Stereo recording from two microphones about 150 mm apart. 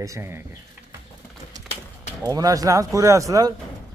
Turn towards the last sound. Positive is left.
turn(degrees=-20)  # may be behind; listen again after turning